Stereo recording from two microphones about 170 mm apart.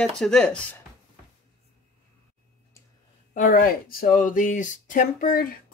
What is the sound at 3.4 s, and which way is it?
Speech, 50° left (ahead or behind).